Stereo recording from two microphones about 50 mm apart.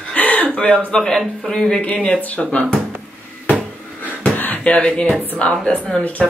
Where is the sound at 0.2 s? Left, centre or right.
Left.